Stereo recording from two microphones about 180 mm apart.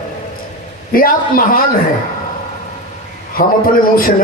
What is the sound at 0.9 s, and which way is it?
Speech, 50° left (ahead or behind).